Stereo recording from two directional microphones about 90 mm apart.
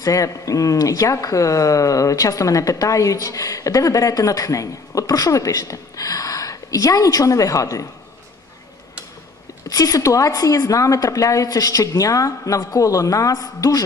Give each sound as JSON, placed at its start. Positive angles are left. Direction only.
{"t": 0.0, "sound": "speech", "side_deg": 40}
{"t": 9.7, "sound": "speech", "side_deg": 40}